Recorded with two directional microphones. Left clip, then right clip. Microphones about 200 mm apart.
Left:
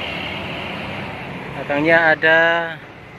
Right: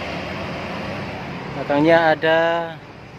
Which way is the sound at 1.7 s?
20° right (ahead or behind).